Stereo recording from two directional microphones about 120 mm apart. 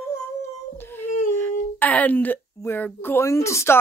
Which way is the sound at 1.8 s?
15° left (ahead or behind).